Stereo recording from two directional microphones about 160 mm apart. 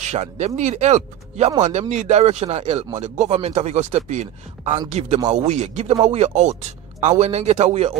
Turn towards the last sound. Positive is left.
turn(degrees=-40)  # may be behind; listen again after turning